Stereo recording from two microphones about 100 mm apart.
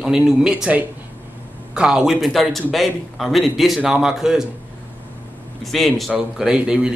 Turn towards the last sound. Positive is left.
turn(degrees=-10)  # may be behind; listen again after turning